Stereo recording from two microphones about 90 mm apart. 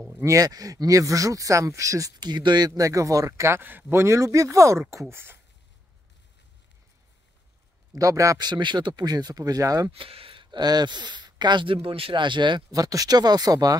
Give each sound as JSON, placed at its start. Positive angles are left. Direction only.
{"t": 0.1, "sound": "speech", "side_deg": -35}
{"t": 7.9, "sound": "speech", "side_deg": -40}
{"t": 8.4, "sound": "speech", "side_deg": -55}
{"t": 9.9, "sound": "speech", "side_deg": -90}
{"t": 12.7, "sound": "speech", "side_deg": -40}